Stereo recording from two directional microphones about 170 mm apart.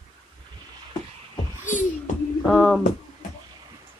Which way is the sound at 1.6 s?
50° left (ahead or behind).